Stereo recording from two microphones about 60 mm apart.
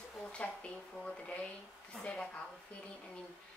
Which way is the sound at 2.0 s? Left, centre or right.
Centre.